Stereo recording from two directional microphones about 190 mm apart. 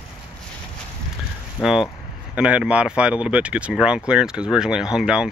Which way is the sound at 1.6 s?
5° right (ahead or behind).